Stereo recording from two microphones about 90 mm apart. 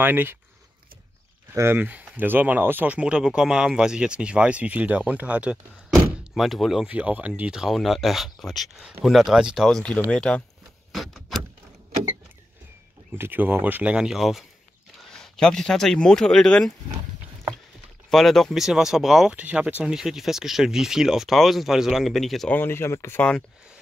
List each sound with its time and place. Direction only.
0.0 s speech: 25° right (ahead or behind)
1.5 s speech: 30° right (ahead or behind)
6.3 s speech: centre (ahead or behind)
6.9 s speech: 15° right (ahead or behind)
9.7 s speech: 5° left (ahead or behind)
10.9 s a sound: centre (ahead or behind)
13.1 s speech: 20° right (ahead or behind)
13.9 s speech: 5° right (ahead or behind)
18.1 s speech: 5° left (ahead or behind)
22.5 s speech: 25° left (ahead or behind)